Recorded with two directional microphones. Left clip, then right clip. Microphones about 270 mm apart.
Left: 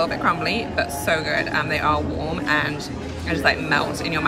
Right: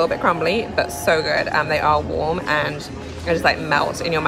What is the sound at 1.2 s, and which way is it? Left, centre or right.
Speech, right.